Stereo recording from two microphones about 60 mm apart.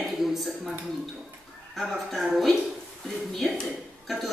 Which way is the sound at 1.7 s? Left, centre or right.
Centre.